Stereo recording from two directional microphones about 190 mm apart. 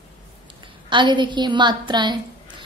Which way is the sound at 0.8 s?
25° right (ahead or behind).